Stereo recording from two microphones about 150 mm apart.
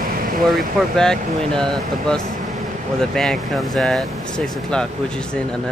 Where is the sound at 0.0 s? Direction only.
75° right (ahead or behind).